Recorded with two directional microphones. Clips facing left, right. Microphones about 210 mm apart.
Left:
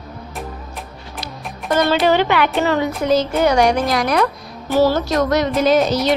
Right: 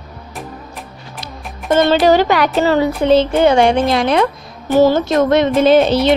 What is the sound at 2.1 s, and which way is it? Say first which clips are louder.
A woman's voice: right 3 dB; 40° right (ahead or behind).